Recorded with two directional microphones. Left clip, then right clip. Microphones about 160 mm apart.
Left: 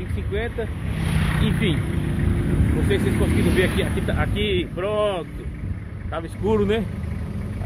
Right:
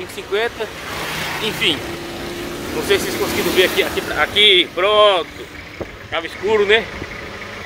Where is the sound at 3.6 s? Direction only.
10° right (ahead or behind).